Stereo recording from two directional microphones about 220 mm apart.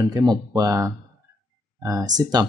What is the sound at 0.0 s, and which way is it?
Speech, 15° right (ahead or behind).